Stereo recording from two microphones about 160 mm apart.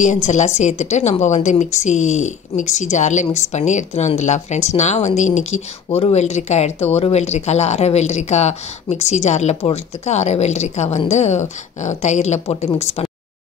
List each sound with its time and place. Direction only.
0.0 s speech: 50° left (ahead or behind)
5.9 s speech: 35° left (ahead or behind)